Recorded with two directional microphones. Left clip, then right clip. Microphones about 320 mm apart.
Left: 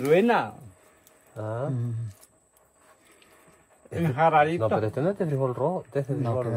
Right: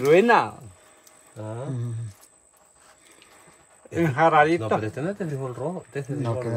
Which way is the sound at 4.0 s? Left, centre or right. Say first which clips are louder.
Right 3 dB; right.